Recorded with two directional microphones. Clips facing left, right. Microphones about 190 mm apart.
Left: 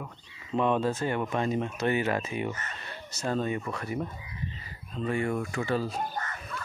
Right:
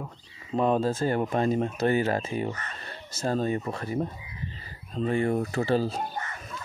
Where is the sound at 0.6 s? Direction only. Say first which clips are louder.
Right 2 dB; 35° right (ahead or behind).